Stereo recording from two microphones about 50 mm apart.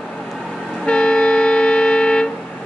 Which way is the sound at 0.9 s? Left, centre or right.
Left.